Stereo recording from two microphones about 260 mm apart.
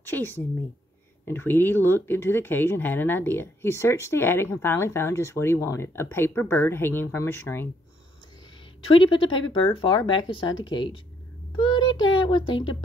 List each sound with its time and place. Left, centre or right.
0.0 s a woman's voice: centre
8.8 s speech: centre